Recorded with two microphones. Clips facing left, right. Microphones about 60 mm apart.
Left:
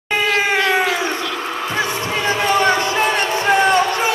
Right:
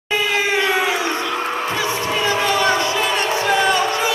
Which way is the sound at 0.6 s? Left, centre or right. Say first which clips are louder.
Left 2 dB; centre.